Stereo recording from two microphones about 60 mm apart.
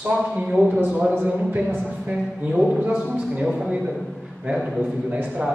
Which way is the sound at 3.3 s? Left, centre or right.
Centre.